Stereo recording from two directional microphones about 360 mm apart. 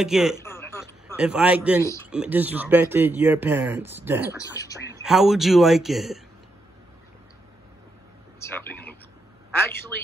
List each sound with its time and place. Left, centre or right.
0.0 s a sound: centre
1.2 s speech: centre
4.4 s speech: centre
8.4 s a man's voice: centre